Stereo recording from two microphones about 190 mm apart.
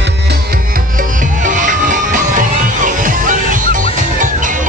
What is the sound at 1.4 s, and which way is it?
Music, 40° right (ahead or behind).